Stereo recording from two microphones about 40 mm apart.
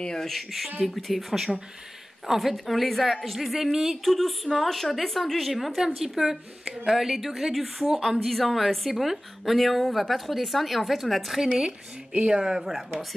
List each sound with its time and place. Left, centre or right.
0.0 s speech: centre
0.3 s a woman's voice: centre
11.3 s speech: centre
12.4 s speech: centre